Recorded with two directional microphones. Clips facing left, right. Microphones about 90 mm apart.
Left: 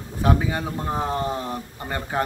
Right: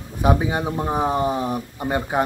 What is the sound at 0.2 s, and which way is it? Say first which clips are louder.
Speech: right 3 dB; 20° right (ahead or behind).